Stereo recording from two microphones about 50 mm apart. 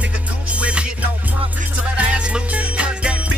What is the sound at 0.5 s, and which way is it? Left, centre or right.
Music, right.